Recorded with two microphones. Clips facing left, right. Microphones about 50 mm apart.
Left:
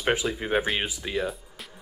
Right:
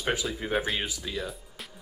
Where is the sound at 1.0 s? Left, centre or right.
Left.